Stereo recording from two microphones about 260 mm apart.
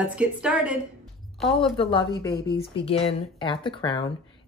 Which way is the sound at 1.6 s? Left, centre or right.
Centre.